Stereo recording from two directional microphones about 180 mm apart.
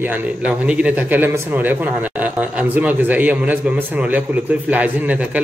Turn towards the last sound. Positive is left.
turn(degrees=-10)  # may be behind; listen again after turning